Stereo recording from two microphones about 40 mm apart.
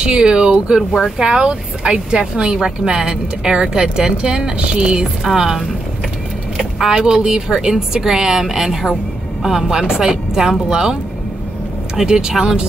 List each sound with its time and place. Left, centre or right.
0.0 s speech: right
5.2 s a woman's voice: centre
6.8 s a woman's voice: centre